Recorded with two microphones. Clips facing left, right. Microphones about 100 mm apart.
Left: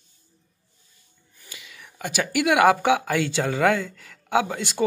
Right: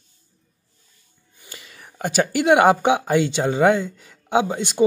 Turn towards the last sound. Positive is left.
turn(degrees=-20)  # may be behind; listen again after turning